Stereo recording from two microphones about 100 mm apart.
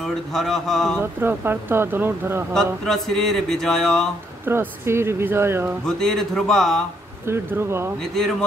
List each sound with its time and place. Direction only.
0.0 s speech: 5° left (ahead or behind)
1.2 s speech: 20° right (ahead or behind)
2.5 s speech: 5° left (ahead or behind)
4.5 s speech: 25° right (ahead or behind)
5.9 s speech: 5° left (ahead or behind)
7.2 s speech: 25° right (ahead or behind)
8.0 s speech: 5° left (ahead or behind)